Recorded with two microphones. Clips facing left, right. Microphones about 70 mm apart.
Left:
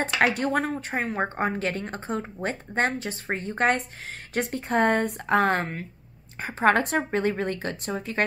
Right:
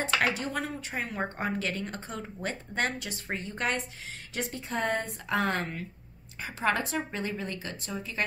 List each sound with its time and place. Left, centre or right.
0.3 s a woman's voice: left